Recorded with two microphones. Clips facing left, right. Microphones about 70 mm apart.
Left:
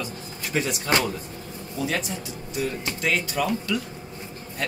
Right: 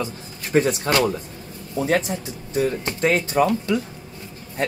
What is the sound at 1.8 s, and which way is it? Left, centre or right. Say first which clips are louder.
Speech: right 6 dB; right.